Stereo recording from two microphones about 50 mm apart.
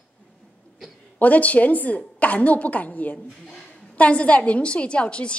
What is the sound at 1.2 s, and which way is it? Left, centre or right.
A woman's voice, left.